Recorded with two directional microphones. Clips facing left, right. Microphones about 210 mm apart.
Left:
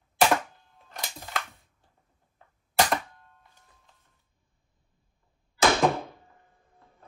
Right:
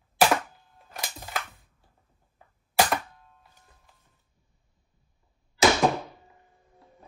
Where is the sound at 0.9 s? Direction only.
5° right (ahead or behind).